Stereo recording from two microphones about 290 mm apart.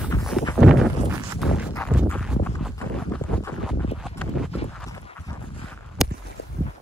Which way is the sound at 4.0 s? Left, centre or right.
Centre.